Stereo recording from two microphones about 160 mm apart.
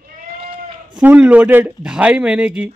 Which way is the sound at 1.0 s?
10° right (ahead or behind).